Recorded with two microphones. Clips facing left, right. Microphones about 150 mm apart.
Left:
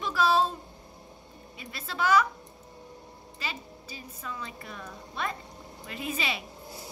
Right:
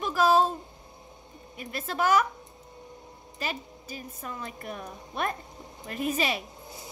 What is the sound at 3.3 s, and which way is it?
A woman's voice, 50° right (ahead or behind).